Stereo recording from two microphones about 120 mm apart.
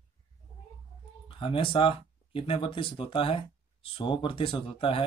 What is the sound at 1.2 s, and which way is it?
Speech, 45° left (ahead or behind).